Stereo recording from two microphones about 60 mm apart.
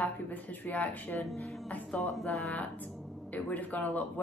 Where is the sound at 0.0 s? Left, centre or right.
Left.